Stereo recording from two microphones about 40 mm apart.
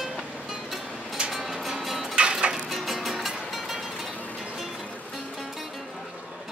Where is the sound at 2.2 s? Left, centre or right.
Right.